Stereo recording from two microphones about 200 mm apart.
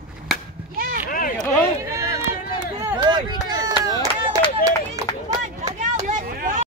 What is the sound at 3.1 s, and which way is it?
Run, 20° right (ahead or behind).